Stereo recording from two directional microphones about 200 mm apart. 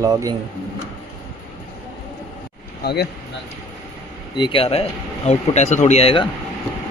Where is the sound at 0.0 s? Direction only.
15° right (ahead or behind).